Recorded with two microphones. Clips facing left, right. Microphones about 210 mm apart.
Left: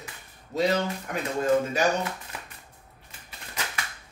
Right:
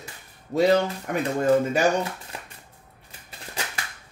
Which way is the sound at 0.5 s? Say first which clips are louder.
Right 4 dB; 55° right (ahead or behind).